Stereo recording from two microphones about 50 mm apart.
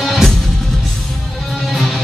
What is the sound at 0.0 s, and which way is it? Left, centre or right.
Music, centre.